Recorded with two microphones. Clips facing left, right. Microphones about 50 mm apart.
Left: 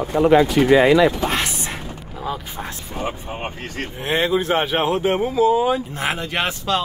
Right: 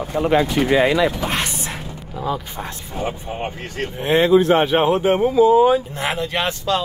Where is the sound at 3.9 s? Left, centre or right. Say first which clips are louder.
Right 6 dB; centre.